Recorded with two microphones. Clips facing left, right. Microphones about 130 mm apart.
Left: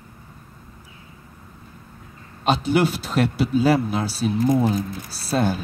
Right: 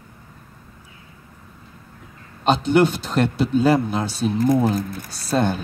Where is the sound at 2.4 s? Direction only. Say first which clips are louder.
Right 3 dB; 5° left (ahead or behind).